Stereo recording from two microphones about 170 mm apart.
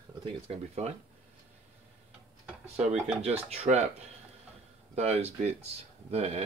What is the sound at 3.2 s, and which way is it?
Speech, 40° right (ahead or behind).